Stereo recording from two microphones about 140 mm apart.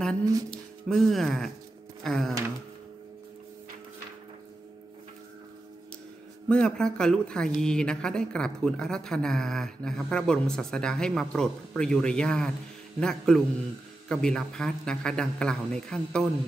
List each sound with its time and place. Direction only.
0.2 s speech: 25° right (ahead or behind)
0.5 s speech: 5° left (ahead or behind)
6.5 s speech: 5° left (ahead or behind)